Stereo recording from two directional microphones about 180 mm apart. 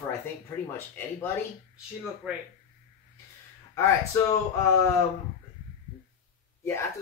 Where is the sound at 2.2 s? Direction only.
5° right (ahead or behind).